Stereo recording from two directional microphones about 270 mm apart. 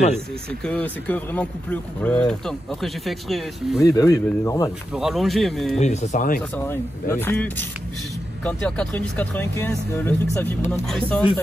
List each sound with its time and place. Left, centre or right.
0.5 s speech: centre
3.8 s speech: centre
4.9 s speech: centre
5.8 s speech: left
6.5 s speech: centre